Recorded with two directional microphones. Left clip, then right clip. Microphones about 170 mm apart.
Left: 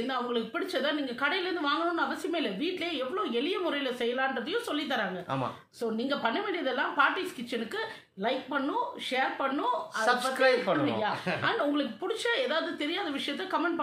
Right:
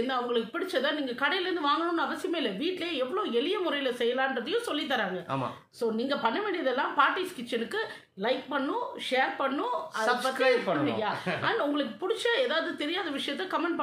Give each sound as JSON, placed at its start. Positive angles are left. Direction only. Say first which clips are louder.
{"t": 0.0, "sound": "a woman's voice", "louder": "right 2 dB", "side_deg": -20}
{"t": 10.0, "sound": "a man's voice", "louder": "even", "side_deg": 10}
{"t": 11.4, "sound": "a woman's voice", "louder": "even", "side_deg": -20}